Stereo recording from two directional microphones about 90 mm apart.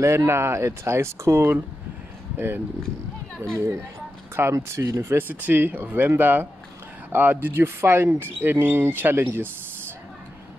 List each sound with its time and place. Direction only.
0.0 s speech: 30° right (ahead or behind)
5.3 s speech: 20° right (ahead or behind)